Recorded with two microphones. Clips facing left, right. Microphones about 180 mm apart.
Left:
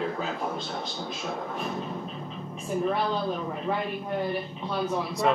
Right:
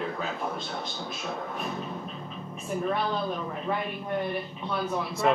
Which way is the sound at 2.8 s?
5° left (ahead or behind).